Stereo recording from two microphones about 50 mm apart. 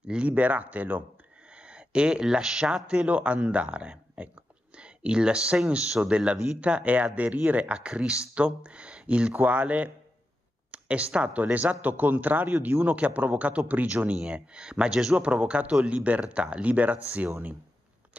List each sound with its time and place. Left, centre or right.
0.1 s speech: right
1.5 s speech: right
9.3 s speech: right
10.7 s a sound: right
11.1 s speech: right
14.3 s speech: centre
15.1 s speech: right